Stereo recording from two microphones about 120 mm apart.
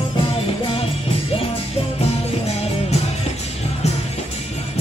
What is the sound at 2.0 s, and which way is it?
Music, 60° left (ahead or behind).